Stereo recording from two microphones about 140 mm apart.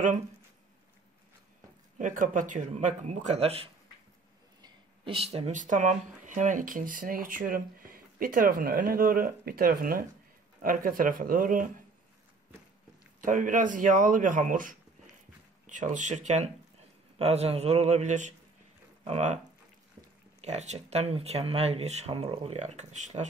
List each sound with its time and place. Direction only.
2.0 s speech: 70° right (ahead or behind); by 3.7 s 45° right (ahead or behind)
4.6 s a sound: 30° right (ahead or behind)
5.1 s speech: 45° right (ahead or behind)
5.5 s speech: 65° right (ahead or behind)
13.2 s speech: 70° right (ahead or behind); by 22.6 s 40° right (ahead or behind)
22.6 s speech: 55° right (ahead or behind)